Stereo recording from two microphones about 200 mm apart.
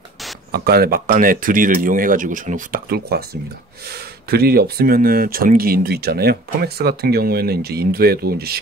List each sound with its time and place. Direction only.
0.5 s speech: 50° right (ahead or behind)